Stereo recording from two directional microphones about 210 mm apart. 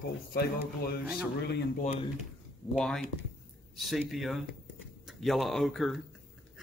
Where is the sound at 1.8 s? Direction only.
30° left (ahead or behind).